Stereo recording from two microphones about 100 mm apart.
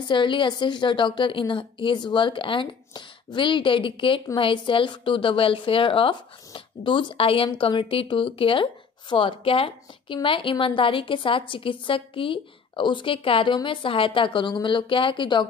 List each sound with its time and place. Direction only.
0.0 s a woman's voice: 55° left (ahead or behind)